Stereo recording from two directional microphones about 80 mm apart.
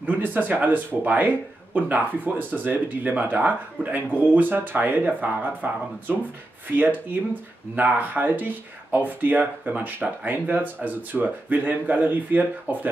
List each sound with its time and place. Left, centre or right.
0.0 s speech: right